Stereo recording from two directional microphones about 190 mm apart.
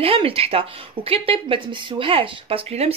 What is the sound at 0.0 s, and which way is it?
Speech, 30° right (ahead or behind).